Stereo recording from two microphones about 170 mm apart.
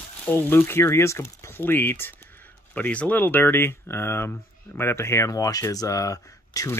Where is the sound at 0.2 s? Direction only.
10° left (ahead or behind).